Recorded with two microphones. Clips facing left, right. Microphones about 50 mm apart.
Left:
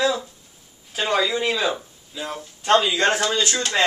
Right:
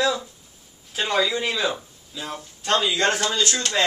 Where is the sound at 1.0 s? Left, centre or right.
Centre.